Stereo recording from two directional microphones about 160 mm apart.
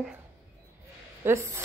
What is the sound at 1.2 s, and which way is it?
Speech, 15° right (ahead or behind).